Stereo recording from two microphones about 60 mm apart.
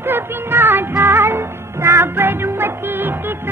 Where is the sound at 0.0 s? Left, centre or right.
Right.